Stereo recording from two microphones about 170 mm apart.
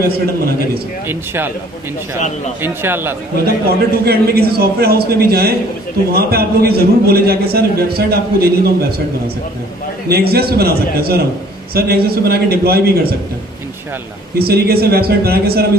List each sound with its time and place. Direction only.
1.0 s speech: 15° right (ahead or behind)
2.1 s speech: 45° left (ahead or behind)
2.6 s speech: 15° right (ahead or behind)
3.6 s a man's voice: 65° right (ahead or behind)
10.0 s a man's voice: 65° right (ahead or behind)
14.4 s a man's voice: 65° right (ahead or behind)